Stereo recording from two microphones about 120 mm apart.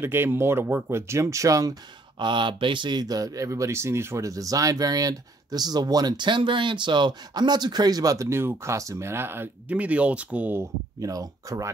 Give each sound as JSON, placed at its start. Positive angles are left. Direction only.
{"t": 0.0, "sound": "speech", "side_deg": -20}